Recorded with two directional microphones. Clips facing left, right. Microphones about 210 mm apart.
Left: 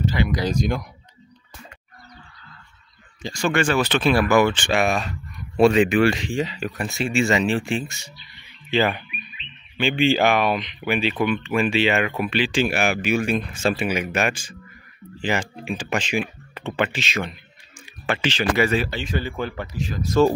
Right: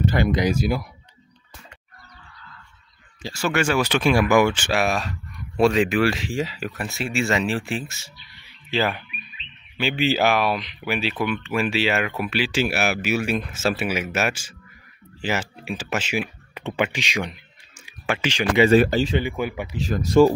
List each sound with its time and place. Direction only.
0.0 s a sound: 55° right (ahead or behind)
0.5 s speech: 5° right (ahead or behind)
3.2 s speech: 5° right (ahead or behind)
18.7 s speech: 40° right (ahead or behind)
19.2 s speech: 10° right (ahead or behind)